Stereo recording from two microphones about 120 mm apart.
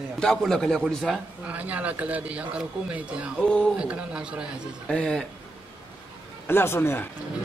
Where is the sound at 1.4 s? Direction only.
10° right (ahead or behind).